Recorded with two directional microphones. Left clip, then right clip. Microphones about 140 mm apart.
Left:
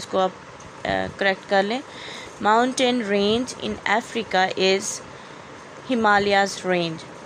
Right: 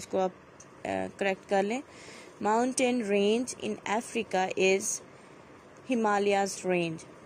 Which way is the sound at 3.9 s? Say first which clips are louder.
Left 10 dB; 35° right (ahead or behind).